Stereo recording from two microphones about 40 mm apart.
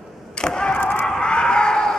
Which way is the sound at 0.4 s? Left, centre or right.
Left.